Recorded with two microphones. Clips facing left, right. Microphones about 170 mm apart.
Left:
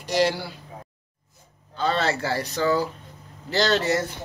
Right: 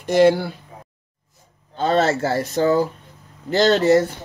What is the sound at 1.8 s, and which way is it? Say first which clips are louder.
Speech: right 6 dB; 45° right (ahead or behind).